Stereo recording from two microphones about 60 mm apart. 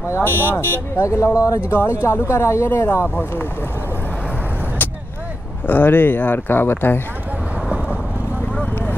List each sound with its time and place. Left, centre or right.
0.2 s speech: left
1.0 s speech: left
1.7 s speech: left
5.7 s speech: left